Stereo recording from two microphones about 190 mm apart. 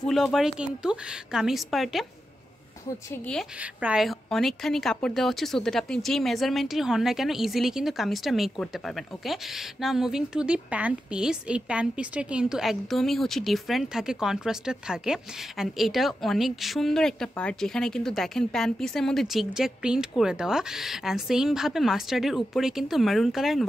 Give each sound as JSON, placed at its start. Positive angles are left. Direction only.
{"t": 0.0, "sound": "a woman's voice", "side_deg": 0}
{"t": 3.1, "sound": "a woman's voice", "side_deg": 5}
{"t": 3.5, "sound": "a woman's voice", "side_deg": -5}